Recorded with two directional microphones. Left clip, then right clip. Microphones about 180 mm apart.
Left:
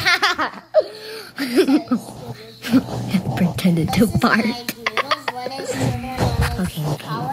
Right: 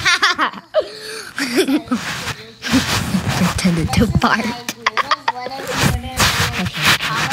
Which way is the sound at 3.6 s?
20° left (ahead or behind).